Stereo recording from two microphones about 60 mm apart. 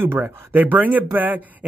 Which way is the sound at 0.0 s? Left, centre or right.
Right.